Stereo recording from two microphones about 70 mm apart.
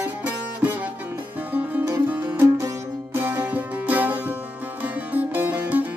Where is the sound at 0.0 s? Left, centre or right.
Right.